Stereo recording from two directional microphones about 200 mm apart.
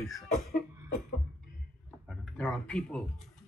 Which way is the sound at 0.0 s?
Centre (ahead or behind).